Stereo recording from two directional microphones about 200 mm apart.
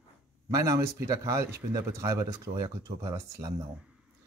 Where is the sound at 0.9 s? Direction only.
15° right (ahead or behind).